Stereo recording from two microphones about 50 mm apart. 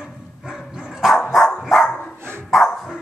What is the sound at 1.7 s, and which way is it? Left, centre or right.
Dog, centre.